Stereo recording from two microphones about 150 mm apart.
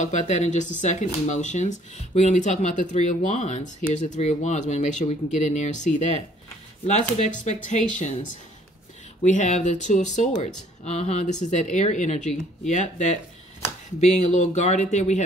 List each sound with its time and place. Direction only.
0.0 s speech: 55° left (ahead or behind)